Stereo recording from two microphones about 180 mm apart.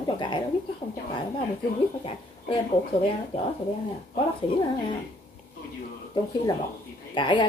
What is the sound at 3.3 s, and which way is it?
Speech, 30° left (ahead or behind).